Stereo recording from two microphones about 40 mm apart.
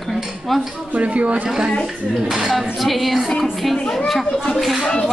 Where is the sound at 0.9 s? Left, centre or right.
Right.